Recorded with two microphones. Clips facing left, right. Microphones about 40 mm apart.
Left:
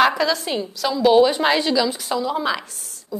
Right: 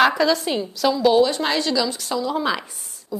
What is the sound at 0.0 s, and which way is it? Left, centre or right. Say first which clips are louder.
A woman's voice: right 1 dB; centre.